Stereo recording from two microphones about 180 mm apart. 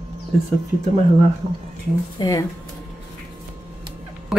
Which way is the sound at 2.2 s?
20° left (ahead or behind).